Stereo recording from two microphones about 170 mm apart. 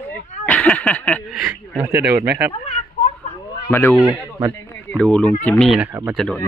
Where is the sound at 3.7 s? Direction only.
15° left (ahead or behind).